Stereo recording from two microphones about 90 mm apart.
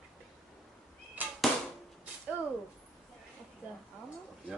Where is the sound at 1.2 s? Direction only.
20° right (ahead or behind).